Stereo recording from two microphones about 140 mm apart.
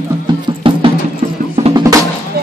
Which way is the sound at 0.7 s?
40° right (ahead or behind).